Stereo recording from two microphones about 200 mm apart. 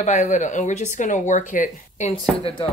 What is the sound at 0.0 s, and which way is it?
Speech, 35° left (ahead or behind).